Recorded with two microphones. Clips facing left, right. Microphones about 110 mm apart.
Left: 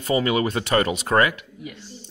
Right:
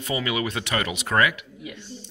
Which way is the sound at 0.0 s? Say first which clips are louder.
Left 5 dB; 35° left (ahead or behind).